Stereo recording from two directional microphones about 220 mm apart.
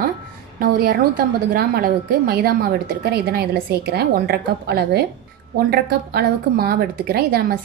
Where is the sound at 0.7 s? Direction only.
40° right (ahead or behind).